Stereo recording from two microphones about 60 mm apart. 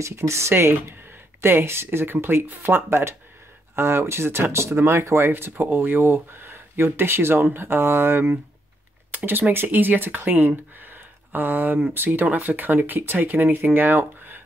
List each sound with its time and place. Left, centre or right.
0.0 s speech: right